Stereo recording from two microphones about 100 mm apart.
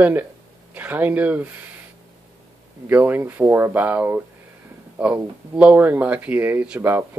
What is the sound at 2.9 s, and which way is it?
Speech, 20° right (ahead or behind).